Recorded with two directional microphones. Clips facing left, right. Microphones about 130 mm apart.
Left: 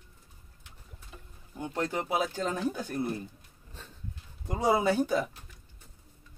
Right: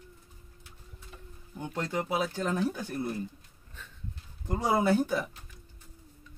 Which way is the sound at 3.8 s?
35° left (ahead or behind).